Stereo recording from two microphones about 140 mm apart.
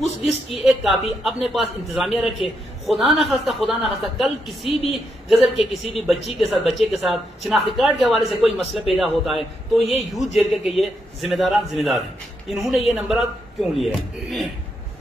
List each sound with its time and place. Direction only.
0.0 s a woman's voice: 50° left (ahead or behind)
0.5 s a man's voice: centre (ahead or behind)
5.8 s a man's voice: centre (ahead or behind)
6.1 s a woman's voice: 45° left (ahead or behind)
6.7 s a man's voice: centre (ahead or behind)